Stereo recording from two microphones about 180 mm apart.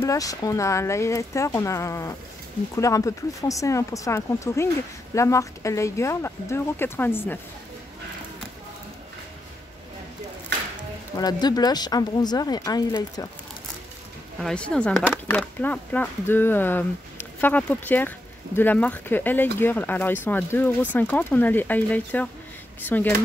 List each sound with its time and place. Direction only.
0.0 s speech: 20° left (ahead or behind)
11.1 s speech: 20° left (ahead or behind)
14.4 s speech: 5° left (ahead or behind)